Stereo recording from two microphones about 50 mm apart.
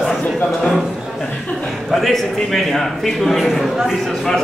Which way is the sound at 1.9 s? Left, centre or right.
Centre.